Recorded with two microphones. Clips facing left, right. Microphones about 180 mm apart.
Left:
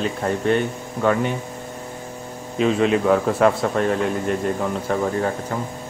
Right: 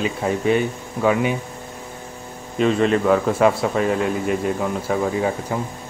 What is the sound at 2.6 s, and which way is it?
A man's voice, centre (ahead or behind).